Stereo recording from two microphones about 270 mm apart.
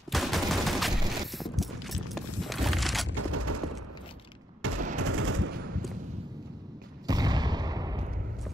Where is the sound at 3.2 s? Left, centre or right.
Right.